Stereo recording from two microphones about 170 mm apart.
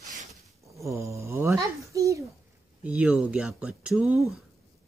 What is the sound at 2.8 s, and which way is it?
Speech, 10° right (ahead or behind).